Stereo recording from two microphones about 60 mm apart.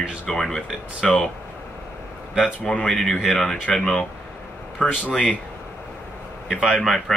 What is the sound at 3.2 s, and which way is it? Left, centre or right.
Speech, centre.